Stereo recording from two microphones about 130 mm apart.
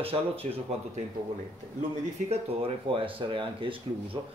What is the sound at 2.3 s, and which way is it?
Speech, 45° right (ahead or behind).